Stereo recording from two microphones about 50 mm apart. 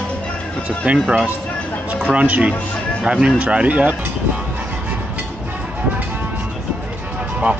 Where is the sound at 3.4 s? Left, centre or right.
Right.